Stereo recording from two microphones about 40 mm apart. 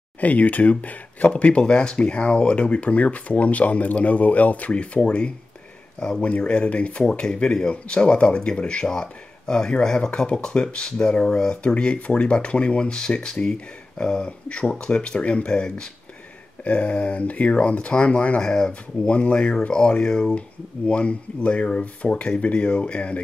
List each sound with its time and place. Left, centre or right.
0.2 s speech: left; by 11.7 s centre
11.7 s speech: left
16.6 s speech: left
18.4 s speech: left
20.3 s speech: left